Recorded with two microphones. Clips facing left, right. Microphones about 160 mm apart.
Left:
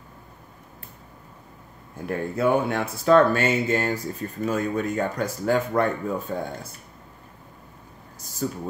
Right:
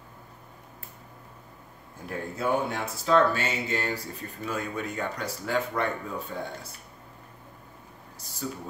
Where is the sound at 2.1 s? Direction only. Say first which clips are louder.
Left 6 dB; 60° left (ahead or behind); by 6.4 s 40° left (ahead or behind).